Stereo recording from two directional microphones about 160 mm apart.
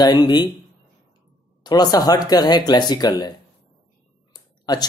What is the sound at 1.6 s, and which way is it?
Speech, 25° left (ahead or behind).